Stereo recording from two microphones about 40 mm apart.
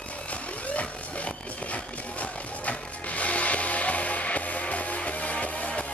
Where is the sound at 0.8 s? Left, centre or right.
Left.